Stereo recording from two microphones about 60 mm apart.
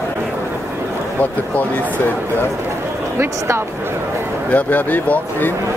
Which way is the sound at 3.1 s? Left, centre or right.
Right.